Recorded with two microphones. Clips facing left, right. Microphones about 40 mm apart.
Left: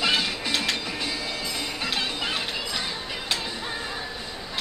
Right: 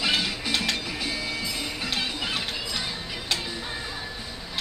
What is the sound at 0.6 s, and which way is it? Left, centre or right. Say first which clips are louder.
Music: left 1 dB; centre.